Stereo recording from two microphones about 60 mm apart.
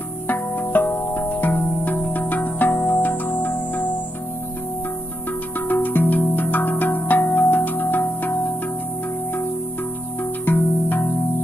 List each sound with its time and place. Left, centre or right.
0.3 s music: left
5.7 s music: left
10.4 s music: left